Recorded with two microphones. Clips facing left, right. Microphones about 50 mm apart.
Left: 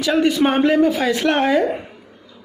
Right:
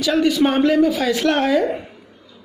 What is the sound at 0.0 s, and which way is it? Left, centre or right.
A man's voice, left.